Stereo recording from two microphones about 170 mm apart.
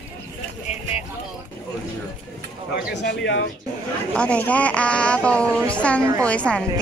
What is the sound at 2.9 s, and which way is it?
Speech, 90° left.